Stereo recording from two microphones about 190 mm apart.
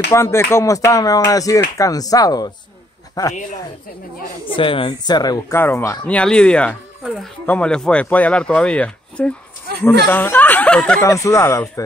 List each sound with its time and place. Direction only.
0.1 s speech: 15° left (ahead or behind)
4.6 s speech: 25° left (ahead or behind); by 11.0 s 5° left (ahead or behind)
11.0 s speech: 15° left (ahead or behind)